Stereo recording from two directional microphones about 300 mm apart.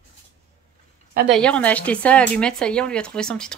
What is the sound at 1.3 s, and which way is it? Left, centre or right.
Speech, centre.